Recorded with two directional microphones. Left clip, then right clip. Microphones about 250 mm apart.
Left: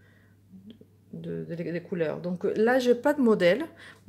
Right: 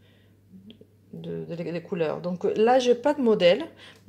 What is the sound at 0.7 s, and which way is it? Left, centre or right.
Speech, centre.